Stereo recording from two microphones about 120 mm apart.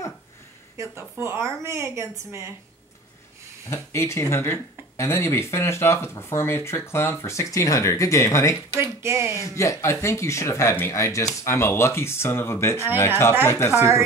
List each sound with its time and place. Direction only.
0.7 s speech: 20° right (ahead or behind)
3.7 s speech: 20° left (ahead or behind)
8.7 s speech: 20° right (ahead or behind)
9.4 s speech: 25° left (ahead or behind)